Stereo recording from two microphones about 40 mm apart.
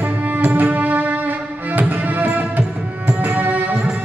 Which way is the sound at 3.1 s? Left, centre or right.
Right.